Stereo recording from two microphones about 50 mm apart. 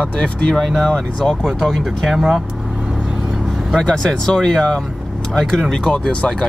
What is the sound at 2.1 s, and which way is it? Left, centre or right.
Speech, centre.